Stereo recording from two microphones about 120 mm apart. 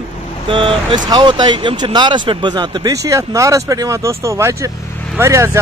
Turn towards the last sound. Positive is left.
turn(degrees=-25)  # may be behind; listen again after turning